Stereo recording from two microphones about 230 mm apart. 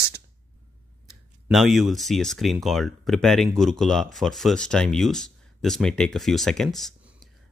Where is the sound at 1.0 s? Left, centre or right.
Centre.